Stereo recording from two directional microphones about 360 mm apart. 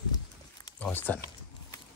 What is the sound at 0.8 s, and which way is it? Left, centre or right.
Speech, centre.